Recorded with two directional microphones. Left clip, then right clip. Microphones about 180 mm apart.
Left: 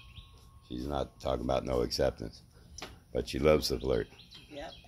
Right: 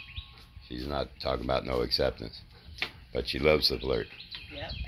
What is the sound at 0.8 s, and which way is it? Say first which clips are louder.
Speech: right 2 dB; 10° left (ahead or behind).